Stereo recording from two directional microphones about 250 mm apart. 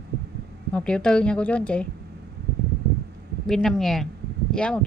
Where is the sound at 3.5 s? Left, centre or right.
Centre.